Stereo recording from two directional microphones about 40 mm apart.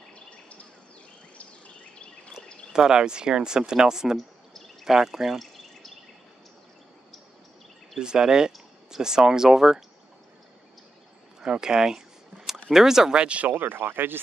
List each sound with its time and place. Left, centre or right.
0.1 s bird: left
1.4 s a sound: left
2.7 s speech: centre
8.0 s speech: centre
11.4 s speech: centre
13.2 s speech: right
13.5 s speech: right